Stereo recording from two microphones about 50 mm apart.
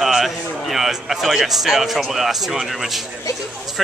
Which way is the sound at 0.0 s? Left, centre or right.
Centre.